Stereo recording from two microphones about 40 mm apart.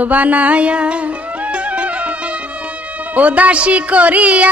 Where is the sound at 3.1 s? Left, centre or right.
Right.